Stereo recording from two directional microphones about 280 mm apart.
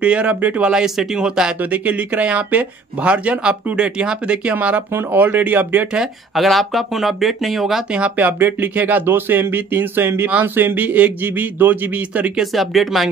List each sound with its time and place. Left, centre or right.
0.0 s speech: centre